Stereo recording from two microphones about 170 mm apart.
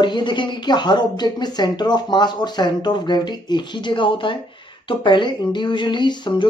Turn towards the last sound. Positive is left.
turn(degrees=25)  # may be behind; listen again after turning